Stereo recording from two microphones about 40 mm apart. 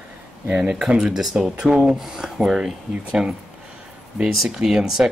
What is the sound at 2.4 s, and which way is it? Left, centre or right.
Speech, centre.